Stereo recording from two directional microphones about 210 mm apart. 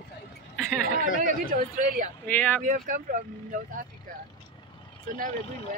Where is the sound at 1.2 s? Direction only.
40° right (ahead or behind).